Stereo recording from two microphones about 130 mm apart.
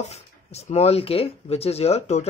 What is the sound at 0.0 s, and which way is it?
Speech, 55° left (ahead or behind).